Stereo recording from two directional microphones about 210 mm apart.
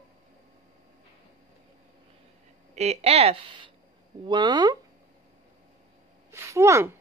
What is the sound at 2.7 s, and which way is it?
Speech, 30° right (ahead or behind).